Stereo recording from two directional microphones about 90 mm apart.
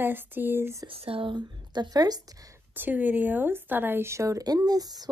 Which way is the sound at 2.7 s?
20° right (ahead or behind).